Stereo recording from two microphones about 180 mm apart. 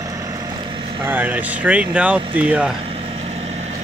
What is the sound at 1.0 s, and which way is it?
Speech, 10° right (ahead or behind).